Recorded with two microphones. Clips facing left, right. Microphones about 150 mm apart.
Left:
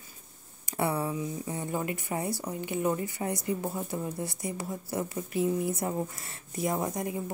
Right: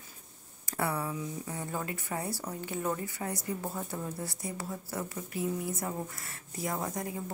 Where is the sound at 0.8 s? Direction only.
25° left (ahead or behind).